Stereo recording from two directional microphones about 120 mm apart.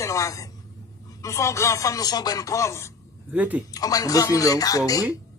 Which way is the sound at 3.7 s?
30° left (ahead or behind).